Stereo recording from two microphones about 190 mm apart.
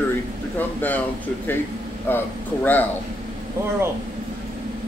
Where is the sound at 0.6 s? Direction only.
10° left (ahead or behind).